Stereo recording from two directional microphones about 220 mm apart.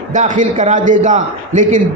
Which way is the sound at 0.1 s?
35° right (ahead or behind).